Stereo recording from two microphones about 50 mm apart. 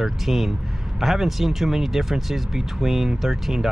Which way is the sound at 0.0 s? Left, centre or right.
Centre.